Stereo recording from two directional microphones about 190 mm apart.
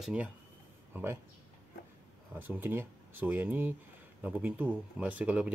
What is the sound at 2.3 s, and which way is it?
Speech, 10° right (ahead or behind).